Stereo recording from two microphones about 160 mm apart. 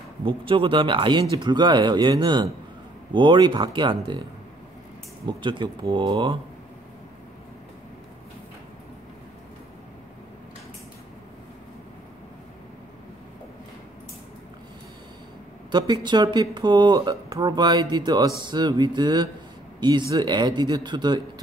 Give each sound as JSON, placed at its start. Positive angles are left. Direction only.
{"t": 0.2, "sound": "speech", "side_deg": -35}
{"t": 5.4, "sound": "speech", "side_deg": -30}
{"t": 15.7, "sound": "speech", "side_deg": -30}